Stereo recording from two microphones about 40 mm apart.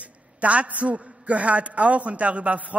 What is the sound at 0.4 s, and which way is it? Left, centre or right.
A man's voice, right.